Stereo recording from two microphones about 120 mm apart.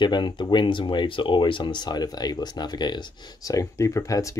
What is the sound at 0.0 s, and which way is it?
Speech, 40° left (ahead or behind).